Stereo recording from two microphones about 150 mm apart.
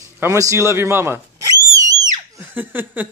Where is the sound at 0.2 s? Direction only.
20° right (ahead or behind).